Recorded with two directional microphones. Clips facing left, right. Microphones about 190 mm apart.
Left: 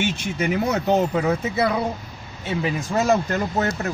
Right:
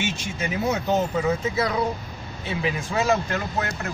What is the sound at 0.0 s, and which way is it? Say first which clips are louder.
Speech: left 4 dB; 55° left (ahead or behind).